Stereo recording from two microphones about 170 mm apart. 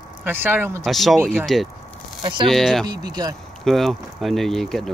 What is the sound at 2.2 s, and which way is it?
Speech, 30° right (ahead or behind).